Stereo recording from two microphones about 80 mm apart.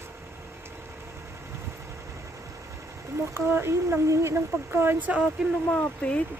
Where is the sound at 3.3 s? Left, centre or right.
Right.